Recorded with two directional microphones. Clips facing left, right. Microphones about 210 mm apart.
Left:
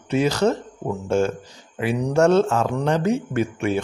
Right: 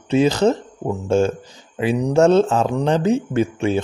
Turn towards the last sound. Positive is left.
turn(degrees=-25)  # may be behind; listen again after turning